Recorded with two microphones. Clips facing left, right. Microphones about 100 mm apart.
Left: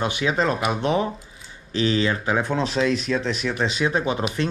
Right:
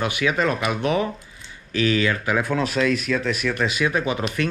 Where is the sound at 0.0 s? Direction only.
25° left (ahead or behind).